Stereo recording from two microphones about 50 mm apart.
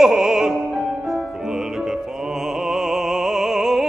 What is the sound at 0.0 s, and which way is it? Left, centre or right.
Music, centre.